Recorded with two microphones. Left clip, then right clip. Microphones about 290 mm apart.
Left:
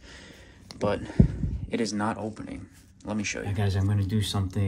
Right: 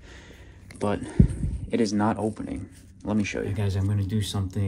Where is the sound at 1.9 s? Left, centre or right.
Right.